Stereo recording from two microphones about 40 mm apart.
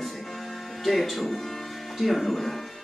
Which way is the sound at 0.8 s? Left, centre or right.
Centre.